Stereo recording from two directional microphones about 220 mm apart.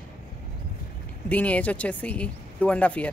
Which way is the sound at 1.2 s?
5° left (ahead or behind).